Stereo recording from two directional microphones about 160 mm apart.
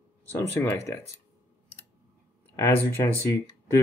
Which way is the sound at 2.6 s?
15° left (ahead or behind).